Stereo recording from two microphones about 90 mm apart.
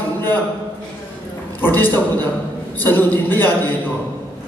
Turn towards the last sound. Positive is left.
turn(degrees=20)  # may be behind; listen again after turning